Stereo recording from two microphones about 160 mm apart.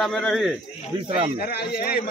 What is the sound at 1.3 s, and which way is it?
Speech, 80° left.